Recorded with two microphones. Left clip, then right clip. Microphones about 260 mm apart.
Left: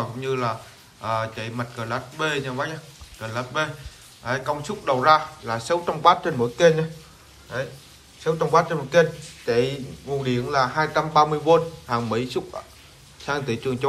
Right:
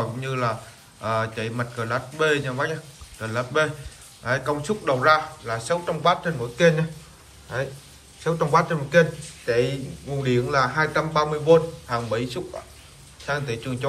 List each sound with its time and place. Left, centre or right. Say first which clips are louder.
0.0 s a man's voice: even; centre
8.2 s a man's voice: left 1 dB; centre